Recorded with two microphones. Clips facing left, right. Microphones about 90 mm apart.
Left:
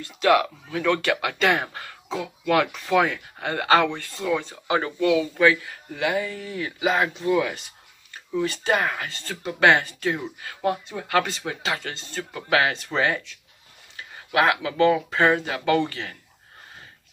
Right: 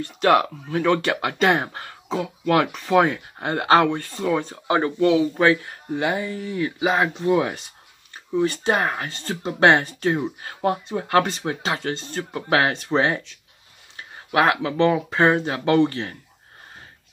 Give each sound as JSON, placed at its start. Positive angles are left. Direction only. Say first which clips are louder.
{"t": 0.2, "sound": "speech", "louder": "right 1 dB", "side_deg": -40}
{"t": 14.3, "sound": "speech", "louder": "right 2 dB", "side_deg": -30}